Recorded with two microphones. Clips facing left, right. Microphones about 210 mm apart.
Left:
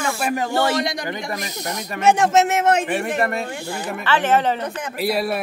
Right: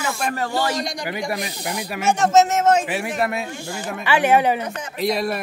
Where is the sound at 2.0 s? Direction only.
60° left (ahead or behind).